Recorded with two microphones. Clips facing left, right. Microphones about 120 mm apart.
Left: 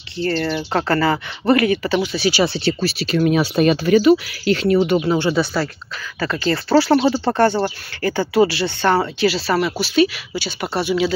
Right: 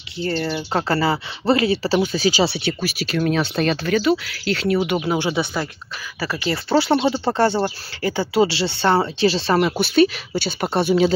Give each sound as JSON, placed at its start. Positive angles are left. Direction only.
{"t": 0.3, "sound": "speech", "side_deg": -5}
{"t": 0.8, "sound": "speech", "side_deg": -25}
{"t": 2.0, "sound": "speech", "side_deg": -40}
{"t": 2.6, "sound": "speech", "side_deg": 0}
{"t": 9.3, "sound": "speech", "side_deg": -35}
{"t": 9.8, "sound": "speech", "side_deg": -45}